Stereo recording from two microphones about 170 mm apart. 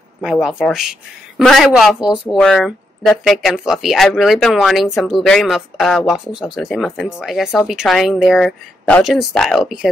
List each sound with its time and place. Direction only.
0.2 s speech: 5° right (ahead or behind)